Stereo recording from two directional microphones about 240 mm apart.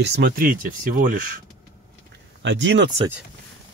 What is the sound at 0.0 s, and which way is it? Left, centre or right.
Speech, right.